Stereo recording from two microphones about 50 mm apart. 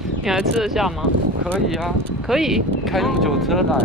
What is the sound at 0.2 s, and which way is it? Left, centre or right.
Speech, centre.